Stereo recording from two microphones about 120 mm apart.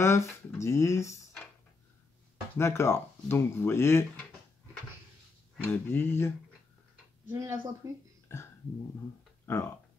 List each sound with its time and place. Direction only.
0.0 s speech: 20° left (ahead or behind)
2.5 s speech: 20° left (ahead or behind)
5.7 s speech: 15° left (ahead or behind)
7.2 s speech: 20° right (ahead or behind)